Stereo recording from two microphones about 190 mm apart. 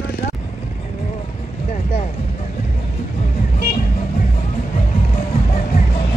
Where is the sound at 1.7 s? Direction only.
35° left (ahead or behind).